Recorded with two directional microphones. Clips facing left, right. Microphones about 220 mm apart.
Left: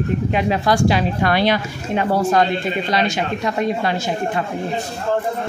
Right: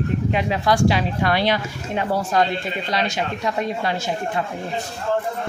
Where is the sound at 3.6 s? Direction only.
65° left (ahead or behind).